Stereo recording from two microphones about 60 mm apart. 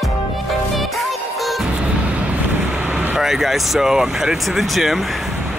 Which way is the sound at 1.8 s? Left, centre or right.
Centre.